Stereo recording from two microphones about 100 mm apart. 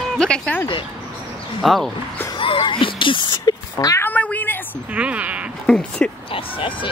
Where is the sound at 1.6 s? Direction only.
Centre (ahead or behind).